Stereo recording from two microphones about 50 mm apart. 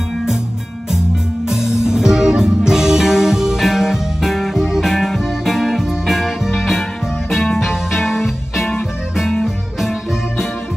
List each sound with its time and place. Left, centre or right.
1.5 s music: centre